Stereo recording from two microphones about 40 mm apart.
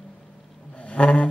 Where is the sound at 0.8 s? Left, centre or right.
Left.